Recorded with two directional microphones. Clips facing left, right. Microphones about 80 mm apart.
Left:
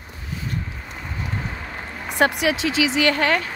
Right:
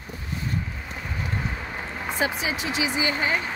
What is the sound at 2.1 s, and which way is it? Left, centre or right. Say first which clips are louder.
Speech: left 7 dB; left.